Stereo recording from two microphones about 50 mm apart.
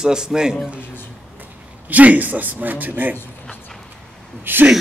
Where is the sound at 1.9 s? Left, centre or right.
Right.